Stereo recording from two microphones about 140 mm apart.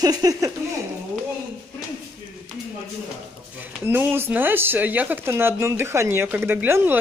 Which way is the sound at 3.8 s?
15° right (ahead or behind).